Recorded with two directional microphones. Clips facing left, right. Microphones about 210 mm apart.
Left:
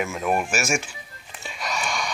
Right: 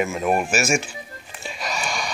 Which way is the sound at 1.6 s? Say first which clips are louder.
Even; 5° right (ahead or behind).